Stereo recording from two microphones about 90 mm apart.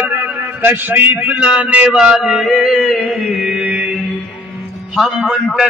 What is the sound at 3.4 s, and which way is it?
Chant, 10° right (ahead or behind).